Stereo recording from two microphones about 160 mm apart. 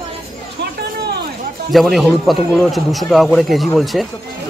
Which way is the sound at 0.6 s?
90° right.